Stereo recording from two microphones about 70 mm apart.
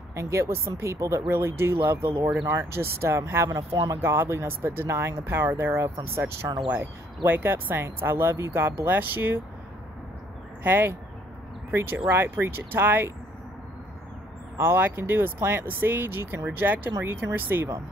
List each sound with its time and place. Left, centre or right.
0.1 s speech: right
1.3 s speech: right
3.5 s speech: right
4.0 s speech: right
10.6 s speech: right
14.6 s speech: right